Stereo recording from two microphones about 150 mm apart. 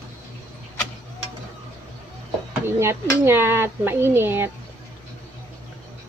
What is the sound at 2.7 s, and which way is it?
Speech, 15° right (ahead or behind).